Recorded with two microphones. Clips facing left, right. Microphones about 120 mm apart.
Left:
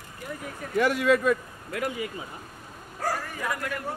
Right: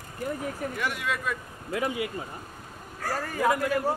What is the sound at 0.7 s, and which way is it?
Speech, 40° left (ahead or behind).